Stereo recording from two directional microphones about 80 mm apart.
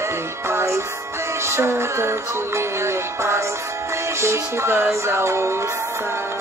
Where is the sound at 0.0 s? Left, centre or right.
Right.